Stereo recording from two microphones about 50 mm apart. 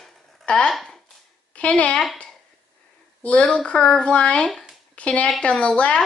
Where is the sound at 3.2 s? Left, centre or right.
Left.